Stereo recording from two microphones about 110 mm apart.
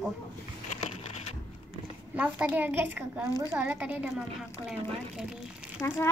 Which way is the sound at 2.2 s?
15° right (ahead or behind).